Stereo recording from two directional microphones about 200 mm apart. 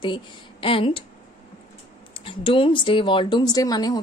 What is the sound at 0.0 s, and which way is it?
Speech, 25° left (ahead or behind).